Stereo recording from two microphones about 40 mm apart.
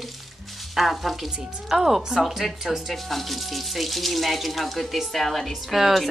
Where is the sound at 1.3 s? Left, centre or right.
Centre.